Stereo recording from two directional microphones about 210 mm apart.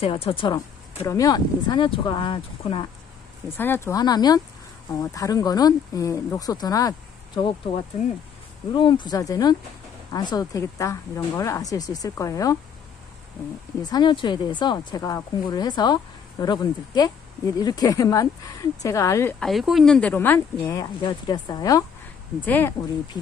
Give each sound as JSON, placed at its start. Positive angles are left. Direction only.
{"t": 0.0, "sound": "speech", "side_deg": 25}
{"t": 3.4, "sound": "speech", "side_deg": 10}
{"t": 13.8, "sound": "speech", "side_deg": 20}
{"t": 19.4, "sound": "speech", "side_deg": 0}